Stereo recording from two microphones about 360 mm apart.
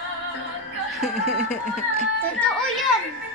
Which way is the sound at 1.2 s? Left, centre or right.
Centre.